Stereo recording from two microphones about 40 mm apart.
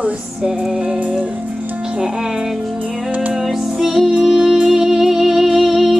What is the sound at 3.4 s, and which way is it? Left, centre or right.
Music, centre.